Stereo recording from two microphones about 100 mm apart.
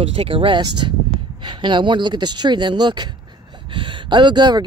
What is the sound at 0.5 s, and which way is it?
Speech, 45° right (ahead or behind).